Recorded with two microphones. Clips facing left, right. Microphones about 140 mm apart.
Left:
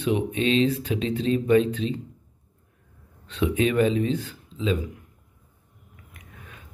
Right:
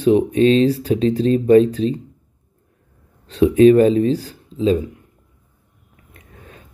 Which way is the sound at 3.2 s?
35° right (ahead or behind).